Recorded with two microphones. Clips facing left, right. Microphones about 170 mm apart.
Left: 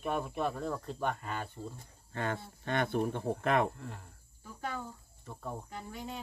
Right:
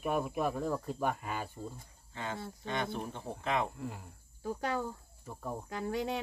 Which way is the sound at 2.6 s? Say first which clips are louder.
Left 6 dB; 55° left (ahead or behind).